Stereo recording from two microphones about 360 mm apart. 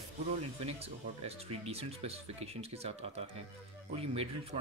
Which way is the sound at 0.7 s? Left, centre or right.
Centre.